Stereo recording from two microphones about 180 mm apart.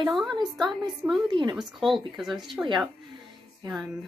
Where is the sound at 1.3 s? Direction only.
25° right (ahead or behind).